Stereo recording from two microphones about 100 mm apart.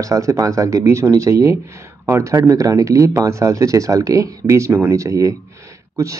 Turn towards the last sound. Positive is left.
turn(degrees=-35)  # may be behind; listen again after turning